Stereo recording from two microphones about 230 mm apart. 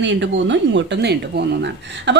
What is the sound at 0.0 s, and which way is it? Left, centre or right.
Speech, right.